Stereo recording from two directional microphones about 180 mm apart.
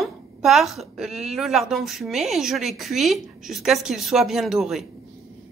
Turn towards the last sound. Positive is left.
turn(degrees=0)  # may be behind; listen again after turning